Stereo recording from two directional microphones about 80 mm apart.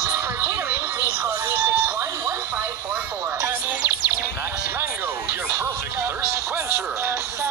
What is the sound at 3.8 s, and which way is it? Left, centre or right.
Music, right.